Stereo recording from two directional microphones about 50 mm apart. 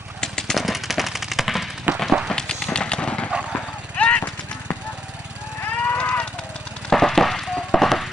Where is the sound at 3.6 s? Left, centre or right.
Left.